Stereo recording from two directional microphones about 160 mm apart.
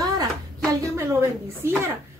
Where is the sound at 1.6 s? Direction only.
15° right (ahead or behind).